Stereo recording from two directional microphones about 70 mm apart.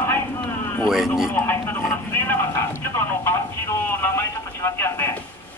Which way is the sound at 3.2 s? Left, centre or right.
Left.